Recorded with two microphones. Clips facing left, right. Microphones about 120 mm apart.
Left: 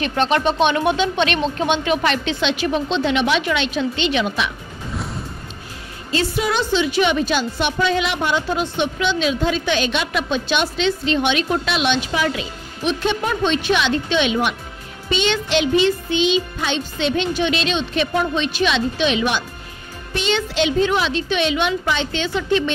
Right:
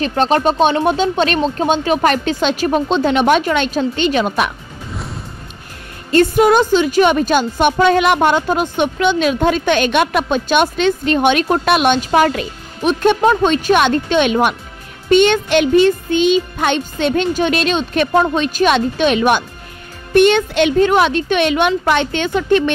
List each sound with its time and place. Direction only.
0.0 s speech: 35° right (ahead or behind)
6.1 s a woman's voice: 50° right (ahead or behind)